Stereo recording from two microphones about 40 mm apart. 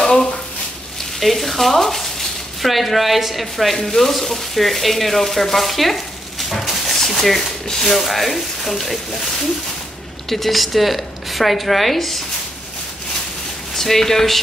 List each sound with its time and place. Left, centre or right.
0.0 s a sound: left
1.2 s speech: centre
6.5 s a sound: centre
7.0 s speech: centre
10.3 s speech: centre
13.7 s speech: centre